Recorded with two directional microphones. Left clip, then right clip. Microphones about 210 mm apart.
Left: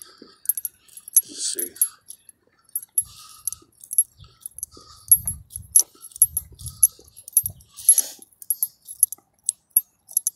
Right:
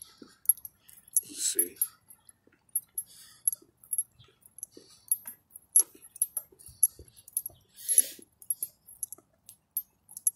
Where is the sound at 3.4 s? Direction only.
30° left (ahead or behind).